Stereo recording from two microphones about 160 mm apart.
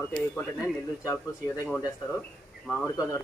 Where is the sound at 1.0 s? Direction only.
20° left (ahead or behind).